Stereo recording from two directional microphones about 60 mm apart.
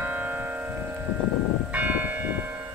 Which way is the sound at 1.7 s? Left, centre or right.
Right.